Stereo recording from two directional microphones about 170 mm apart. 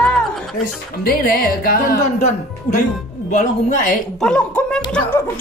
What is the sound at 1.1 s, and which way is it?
Music, 60° left (ahead or behind).